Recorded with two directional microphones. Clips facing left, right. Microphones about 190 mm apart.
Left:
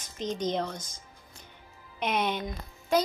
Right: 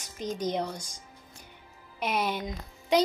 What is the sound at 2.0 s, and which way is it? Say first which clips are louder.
Speech: left 1 dB; 5° right (ahead or behind).